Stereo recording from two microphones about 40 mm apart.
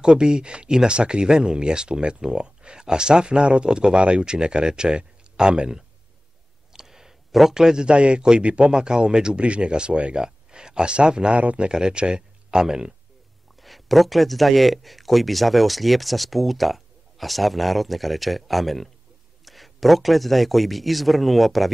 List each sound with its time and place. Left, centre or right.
0.0 s speech: centre
6.7 s a sound: centre
7.5 s speech: centre
13.6 s speech: centre